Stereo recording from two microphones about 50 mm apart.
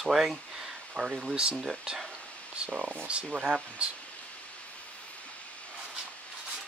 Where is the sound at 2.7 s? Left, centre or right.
Right.